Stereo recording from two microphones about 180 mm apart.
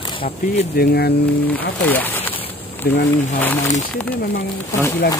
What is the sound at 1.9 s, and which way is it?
Speech, 10° left (ahead or behind).